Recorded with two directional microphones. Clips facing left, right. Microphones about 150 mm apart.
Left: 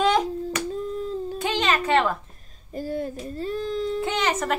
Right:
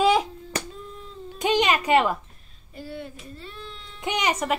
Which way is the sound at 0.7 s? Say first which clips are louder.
Left 12 dB; 40° left (ahead or behind).